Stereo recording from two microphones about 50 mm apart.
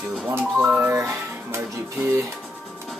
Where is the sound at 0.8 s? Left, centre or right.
Right.